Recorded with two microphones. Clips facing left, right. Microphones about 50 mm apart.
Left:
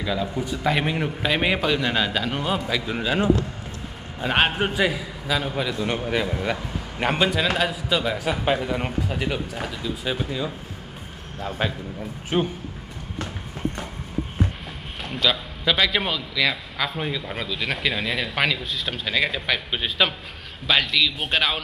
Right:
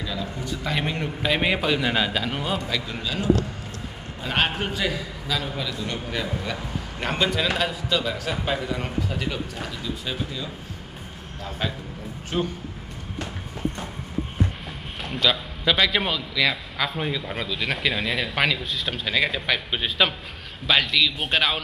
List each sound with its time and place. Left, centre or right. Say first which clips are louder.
0.0 s a man's voice: left 5 dB; centre
3.0 s a man's voice: left 2 dB; left
7.2 s a man's voice: left 2 dB; centre
8.0 s a man's voice: left 3 dB; left
15.0 s a man's voice: even; centre